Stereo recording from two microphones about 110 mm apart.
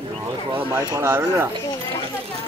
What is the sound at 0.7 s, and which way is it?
Speech, 25° right (ahead or behind).